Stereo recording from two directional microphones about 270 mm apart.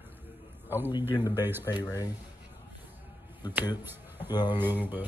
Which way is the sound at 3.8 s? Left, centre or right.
Centre.